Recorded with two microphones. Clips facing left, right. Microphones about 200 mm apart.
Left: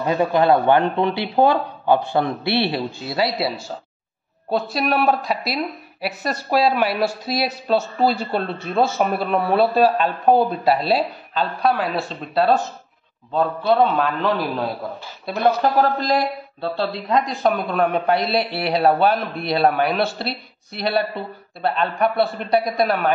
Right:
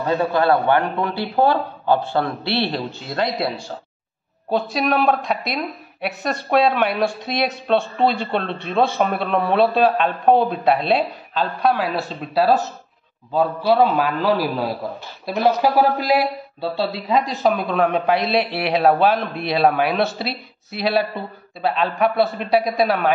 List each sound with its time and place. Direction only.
0.0 s a man's voice: 15° left (ahead or behind); by 23.1 s centre (ahead or behind)